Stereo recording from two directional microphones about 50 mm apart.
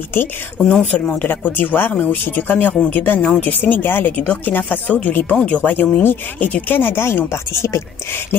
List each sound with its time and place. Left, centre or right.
0.6 s speech: centre
0.9 s speech: left